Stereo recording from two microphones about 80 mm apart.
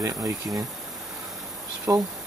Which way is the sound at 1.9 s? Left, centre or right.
Right.